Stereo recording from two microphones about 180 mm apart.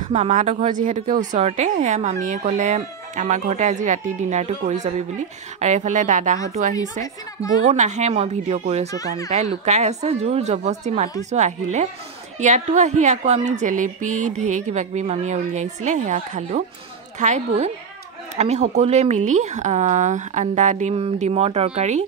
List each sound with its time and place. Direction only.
0.0 s a woman's voice: 45° right (ahead or behind)